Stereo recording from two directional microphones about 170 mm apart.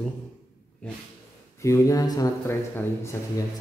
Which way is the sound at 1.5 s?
15° left (ahead or behind).